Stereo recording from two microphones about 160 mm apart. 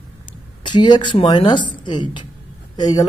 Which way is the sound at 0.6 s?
30° left (ahead or behind).